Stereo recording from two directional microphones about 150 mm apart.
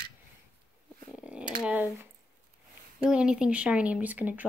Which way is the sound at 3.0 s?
5° right (ahead or behind).